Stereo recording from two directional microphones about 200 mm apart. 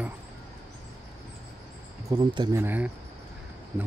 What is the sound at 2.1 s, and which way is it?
Speech, 20° right (ahead or behind).